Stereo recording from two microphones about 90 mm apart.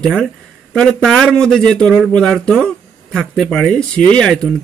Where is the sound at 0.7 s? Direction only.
5° left (ahead or behind).